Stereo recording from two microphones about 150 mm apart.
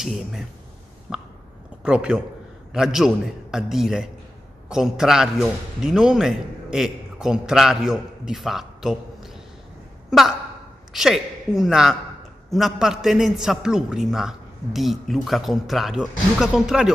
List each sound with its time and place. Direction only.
0.0 s a man's voice: centre (ahead or behind)
1.1 s a sound: 5° right (ahead or behind)
1.9 s a man's voice: 5° right (ahead or behind)
10.9 s a man's voice: centre (ahead or behind)